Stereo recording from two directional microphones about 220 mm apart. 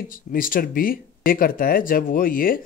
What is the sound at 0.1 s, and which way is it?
Speech, 40° left (ahead or behind).